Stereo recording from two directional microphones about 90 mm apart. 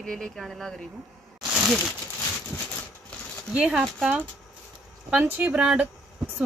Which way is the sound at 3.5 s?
10° right (ahead or behind).